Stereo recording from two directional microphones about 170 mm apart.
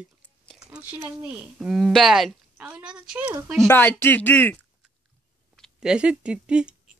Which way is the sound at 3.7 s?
10° left (ahead or behind).